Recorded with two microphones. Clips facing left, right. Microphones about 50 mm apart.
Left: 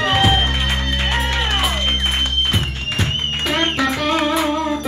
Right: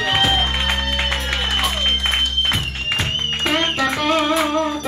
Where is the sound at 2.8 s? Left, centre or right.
Right.